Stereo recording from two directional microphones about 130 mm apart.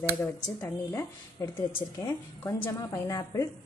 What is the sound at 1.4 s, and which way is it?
Speech, 20° left (ahead or behind).